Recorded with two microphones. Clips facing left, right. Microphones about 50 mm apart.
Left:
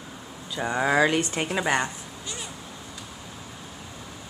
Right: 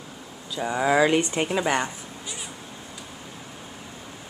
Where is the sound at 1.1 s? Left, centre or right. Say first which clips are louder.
Right 3 dB; centre.